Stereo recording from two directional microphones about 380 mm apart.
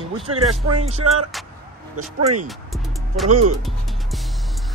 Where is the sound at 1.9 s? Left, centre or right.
Right.